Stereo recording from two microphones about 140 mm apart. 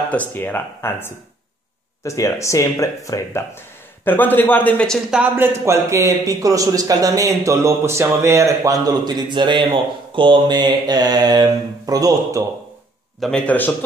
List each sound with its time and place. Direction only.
0.1 s speech: 10° left (ahead or behind)
5.2 s a man's voice: 15° right (ahead or behind)
13.2 s speech: 10° left (ahead or behind)